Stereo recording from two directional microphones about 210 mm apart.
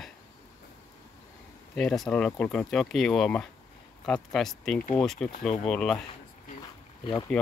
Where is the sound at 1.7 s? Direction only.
5° left (ahead or behind).